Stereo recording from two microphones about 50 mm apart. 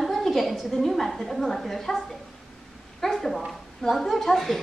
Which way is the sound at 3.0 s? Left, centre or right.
Centre.